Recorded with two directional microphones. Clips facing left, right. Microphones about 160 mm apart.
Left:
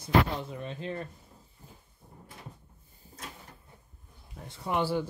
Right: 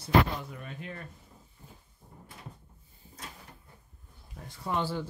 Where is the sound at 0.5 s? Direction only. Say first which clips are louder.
Left 6 dB; 25° left (ahead or behind).